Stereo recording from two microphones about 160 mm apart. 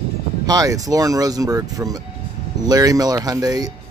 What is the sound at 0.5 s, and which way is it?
Speech, 20° right (ahead or behind).